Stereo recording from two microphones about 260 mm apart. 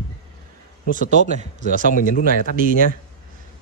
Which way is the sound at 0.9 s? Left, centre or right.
Right.